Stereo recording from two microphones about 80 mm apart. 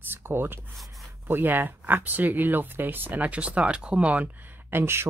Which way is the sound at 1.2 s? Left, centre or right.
Right.